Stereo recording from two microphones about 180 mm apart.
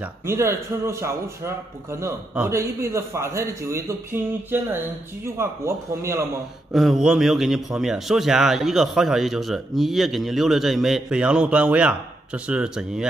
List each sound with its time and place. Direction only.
0.3 s a man's voice: 15° right (ahead or behind)
6.7 s a man's voice: centre (ahead or behind)